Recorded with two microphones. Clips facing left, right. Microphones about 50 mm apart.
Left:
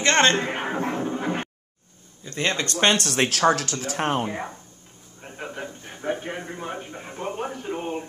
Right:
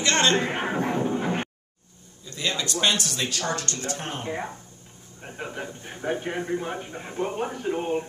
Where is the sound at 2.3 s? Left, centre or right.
Left.